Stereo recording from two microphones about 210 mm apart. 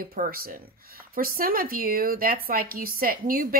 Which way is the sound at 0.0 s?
45° right (ahead or behind).